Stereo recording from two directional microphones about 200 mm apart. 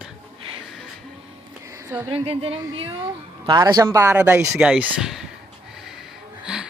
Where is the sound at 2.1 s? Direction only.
30° right (ahead or behind); by 5.3 s 5° right (ahead or behind).